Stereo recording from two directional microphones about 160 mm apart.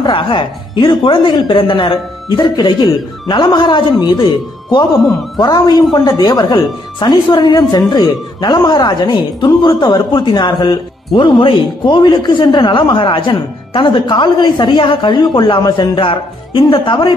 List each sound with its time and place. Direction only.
0.0 s speech: 30° left (ahead or behind)
5.4 s speech: 25° left (ahead or behind)